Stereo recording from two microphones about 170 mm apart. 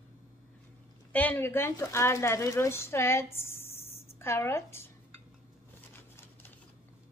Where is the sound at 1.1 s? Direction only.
10° left (ahead or behind).